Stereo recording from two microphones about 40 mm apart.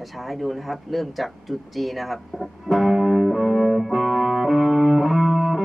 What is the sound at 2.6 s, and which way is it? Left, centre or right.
Music, centre.